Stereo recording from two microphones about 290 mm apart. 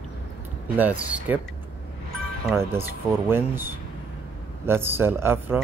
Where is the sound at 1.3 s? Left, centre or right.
Centre.